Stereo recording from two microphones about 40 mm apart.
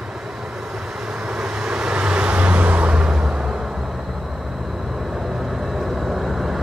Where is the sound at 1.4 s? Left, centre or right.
Centre.